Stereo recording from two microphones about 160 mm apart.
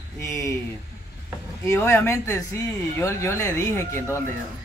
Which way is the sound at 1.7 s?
15° left (ahead or behind).